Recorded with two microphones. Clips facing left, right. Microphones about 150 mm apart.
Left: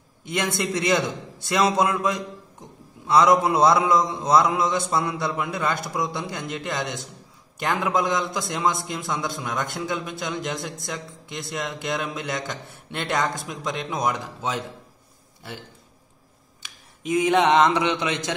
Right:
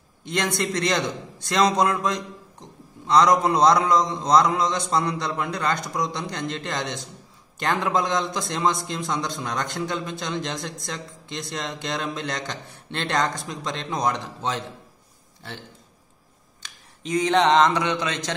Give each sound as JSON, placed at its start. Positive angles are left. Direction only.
{"t": 0.2, "sound": "a man's voice", "side_deg": 10}
{"t": 16.6, "sound": "mantra", "side_deg": 10}